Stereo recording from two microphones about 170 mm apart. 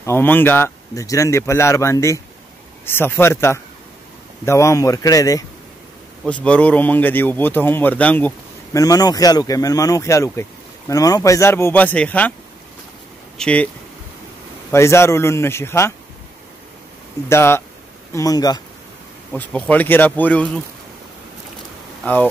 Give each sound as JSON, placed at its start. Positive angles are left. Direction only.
{"t": 0.0, "sound": "speech", "side_deg": 15}
{"t": 6.2, "sound": "speech", "side_deg": 5}
{"t": 8.7, "sound": "speech", "side_deg": 20}
{"t": 13.4, "sound": "speech", "side_deg": 5}
{"t": 14.7, "sound": "speech", "side_deg": 15}
{"t": 17.3, "sound": "speech", "side_deg": 15}
{"t": 19.3, "sound": "speech", "side_deg": 10}
{"t": 22.0, "sound": "speech", "side_deg": 10}